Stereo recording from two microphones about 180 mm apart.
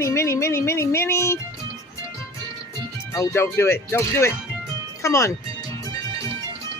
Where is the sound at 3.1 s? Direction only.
15° left (ahead or behind).